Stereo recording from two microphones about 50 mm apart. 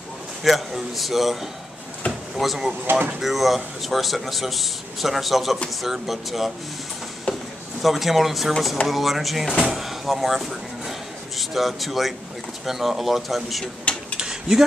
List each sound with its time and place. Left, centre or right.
0.4 s speech: centre
2.9 s speech: right
3.2 s speech: centre
7.3 s a sound: left
7.8 s speech: centre
14.1 s mechanisms: centre